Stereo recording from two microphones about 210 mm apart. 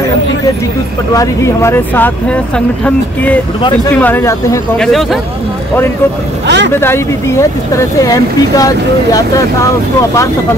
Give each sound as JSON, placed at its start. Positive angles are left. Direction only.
{"t": 1.1, "sound": "speech", "side_deg": 15}
{"t": 4.7, "sound": "speech", "side_deg": 0}
{"t": 6.4, "sound": "speech", "side_deg": -55}
{"t": 6.8, "sound": "speech", "side_deg": 10}